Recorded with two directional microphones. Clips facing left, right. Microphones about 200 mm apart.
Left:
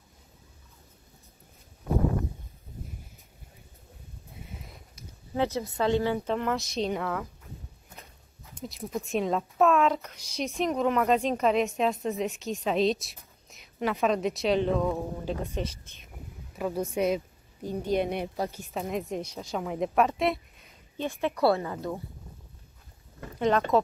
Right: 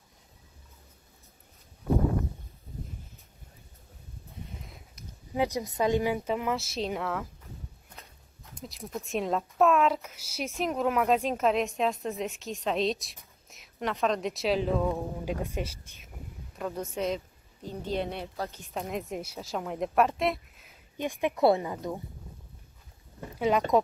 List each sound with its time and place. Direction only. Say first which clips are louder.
5.3 s speech: left 1 dB; 15° right (ahead or behind)
8.5 s a woman's voice: left 4 dB; centre (ahead or behind)
16.5 s speech: left 4 dB; 5° left (ahead or behind)
18.7 s a woman's voice: left 2 dB; centre (ahead or behind)
21.0 s speech: right 1 dB; 15° right (ahead or behind)
23.5 s speech: left 1 dB; 10° right (ahead or behind)